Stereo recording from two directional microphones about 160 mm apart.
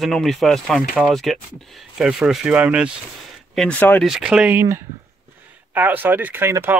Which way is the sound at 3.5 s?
5° left (ahead or behind).